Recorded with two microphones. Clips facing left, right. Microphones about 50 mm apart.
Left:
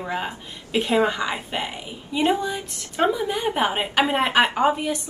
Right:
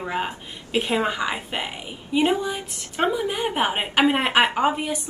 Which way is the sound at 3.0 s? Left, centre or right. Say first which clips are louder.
Left 1 dB; centre.